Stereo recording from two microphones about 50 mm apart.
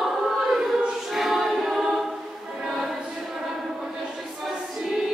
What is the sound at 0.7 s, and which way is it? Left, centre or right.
Choir, centre.